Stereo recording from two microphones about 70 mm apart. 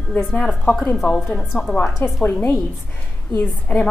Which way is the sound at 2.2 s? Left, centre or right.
Left.